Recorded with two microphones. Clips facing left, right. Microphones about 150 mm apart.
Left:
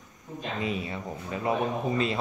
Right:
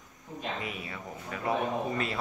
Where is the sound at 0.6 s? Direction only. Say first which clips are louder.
Left 7 dB; 25° left (ahead or behind).